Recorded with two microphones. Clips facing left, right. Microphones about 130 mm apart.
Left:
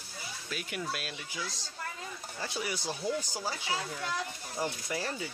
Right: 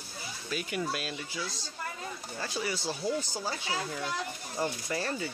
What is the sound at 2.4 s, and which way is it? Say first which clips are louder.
Speech: right 2 dB; 15° left (ahead or behind).